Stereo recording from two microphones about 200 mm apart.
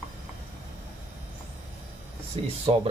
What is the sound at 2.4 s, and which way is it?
Speech, 30° right (ahead or behind).